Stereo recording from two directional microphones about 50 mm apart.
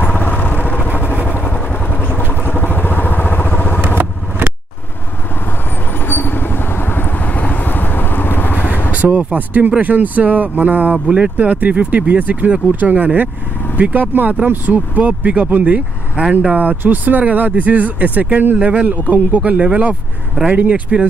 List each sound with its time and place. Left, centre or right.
0.0 s vehicle: left
2.4 s vehicle: left
6.0 s vehicle: left
7.3 s vehicle: left
8.9 s speech: right
11.1 s speech: centre
11.3 s speech: right